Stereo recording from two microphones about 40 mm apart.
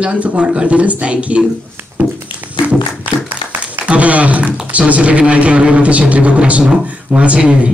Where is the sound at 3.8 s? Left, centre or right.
Right.